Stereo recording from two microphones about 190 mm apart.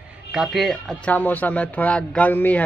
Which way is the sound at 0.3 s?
Centre (ahead or behind).